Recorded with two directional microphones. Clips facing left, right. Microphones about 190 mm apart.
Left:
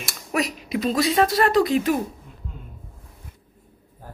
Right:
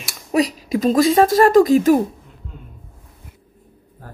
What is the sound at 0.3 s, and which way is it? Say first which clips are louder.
Speech: right 7 dB; 35° right (ahead or behind).